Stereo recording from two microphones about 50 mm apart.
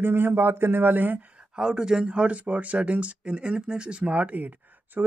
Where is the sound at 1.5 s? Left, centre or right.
Centre.